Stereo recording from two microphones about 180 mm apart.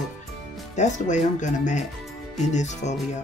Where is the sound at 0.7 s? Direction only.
40° left (ahead or behind).